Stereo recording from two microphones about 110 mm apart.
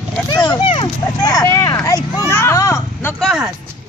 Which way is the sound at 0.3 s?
35° left (ahead or behind).